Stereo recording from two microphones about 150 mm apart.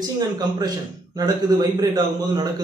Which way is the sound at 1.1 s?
25° right (ahead or behind).